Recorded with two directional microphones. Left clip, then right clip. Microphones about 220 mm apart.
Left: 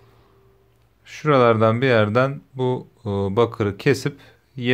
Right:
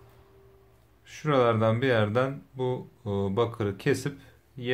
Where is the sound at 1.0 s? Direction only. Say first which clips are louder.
Left 8 dB; 30° left (ahead or behind).